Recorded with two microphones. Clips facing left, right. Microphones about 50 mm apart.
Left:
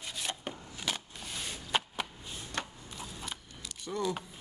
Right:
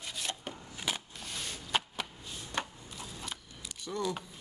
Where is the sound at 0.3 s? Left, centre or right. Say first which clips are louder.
Left 1 dB; centre.